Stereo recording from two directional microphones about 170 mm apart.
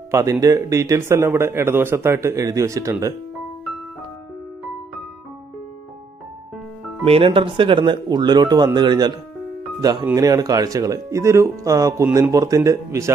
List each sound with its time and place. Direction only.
0.1 s a man's voice: 20° right (ahead or behind)
7.1 s speech: 35° right (ahead or behind)